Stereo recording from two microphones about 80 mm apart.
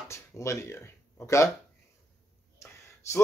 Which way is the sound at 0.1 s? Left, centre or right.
Left.